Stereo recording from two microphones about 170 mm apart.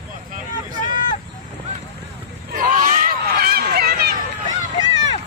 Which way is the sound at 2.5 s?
50° right (ahead or behind).